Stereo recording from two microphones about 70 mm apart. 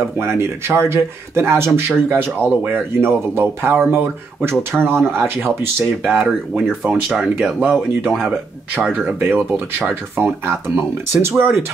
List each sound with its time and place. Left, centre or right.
0.2 s speech: right
6.0 s speech: centre
7.6 s speech: right